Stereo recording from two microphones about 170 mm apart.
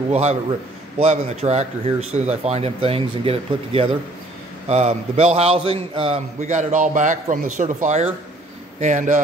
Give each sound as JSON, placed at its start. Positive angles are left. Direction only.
{"t": 0.1, "sound": "a man's voice", "side_deg": -40}